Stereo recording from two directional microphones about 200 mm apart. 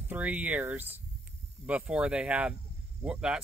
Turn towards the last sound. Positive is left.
turn(degrees=-5)  # may be behind; listen again after turning